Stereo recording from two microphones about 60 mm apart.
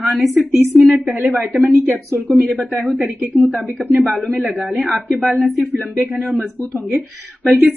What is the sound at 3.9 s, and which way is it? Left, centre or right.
Speech, centre.